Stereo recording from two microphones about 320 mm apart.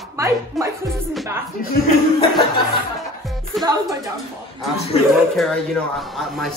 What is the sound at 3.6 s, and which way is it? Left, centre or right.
Speech, centre.